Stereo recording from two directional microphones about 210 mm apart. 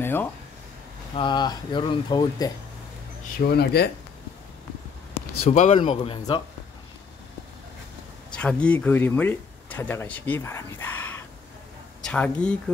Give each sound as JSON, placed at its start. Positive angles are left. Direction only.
{"t": 0.0, "sound": "a sound", "side_deg": 10}
{"t": 1.1, "sound": "speech", "side_deg": 20}
{"t": 3.4, "sound": "speech", "side_deg": 50}
{"t": 5.4, "sound": "speech", "side_deg": 30}
{"t": 8.3, "sound": "speech", "side_deg": 5}